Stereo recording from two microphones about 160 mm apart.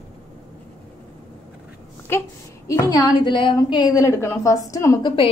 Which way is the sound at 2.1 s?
15° left (ahead or behind).